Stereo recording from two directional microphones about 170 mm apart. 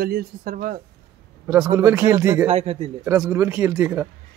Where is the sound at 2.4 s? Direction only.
35° right (ahead or behind).